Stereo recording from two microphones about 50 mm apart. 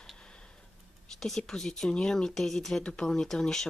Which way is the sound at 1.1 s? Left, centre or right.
Centre.